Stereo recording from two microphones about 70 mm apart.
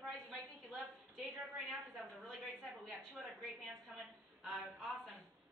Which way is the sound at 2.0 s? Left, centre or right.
Centre.